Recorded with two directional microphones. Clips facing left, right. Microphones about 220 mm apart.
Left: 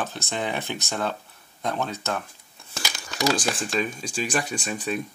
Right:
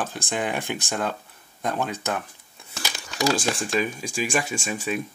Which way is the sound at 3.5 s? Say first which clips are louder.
Right 2 dB; 10° right (ahead or behind).